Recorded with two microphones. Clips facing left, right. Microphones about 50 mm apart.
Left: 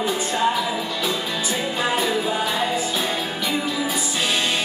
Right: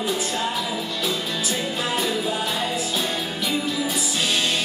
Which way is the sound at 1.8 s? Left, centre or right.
Centre.